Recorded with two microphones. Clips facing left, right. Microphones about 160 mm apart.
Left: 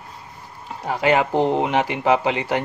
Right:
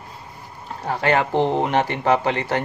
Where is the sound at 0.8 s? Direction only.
10° left (ahead or behind).